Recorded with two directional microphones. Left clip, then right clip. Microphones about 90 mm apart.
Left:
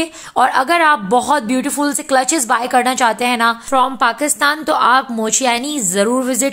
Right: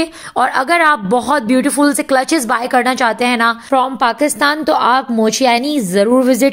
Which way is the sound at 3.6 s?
45° right (ahead or behind).